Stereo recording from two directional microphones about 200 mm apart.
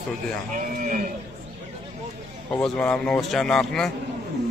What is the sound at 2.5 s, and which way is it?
A man's voice, 5° left (ahead or behind).